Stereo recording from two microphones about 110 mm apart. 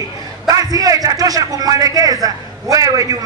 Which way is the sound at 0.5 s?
35° right (ahead or behind).